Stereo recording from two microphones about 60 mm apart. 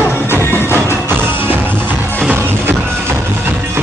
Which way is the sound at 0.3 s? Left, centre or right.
Left.